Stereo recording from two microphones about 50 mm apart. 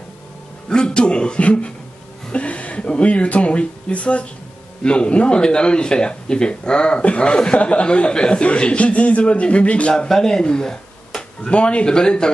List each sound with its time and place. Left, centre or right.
0.7 s a man's voice: centre
9.9 s speech: centre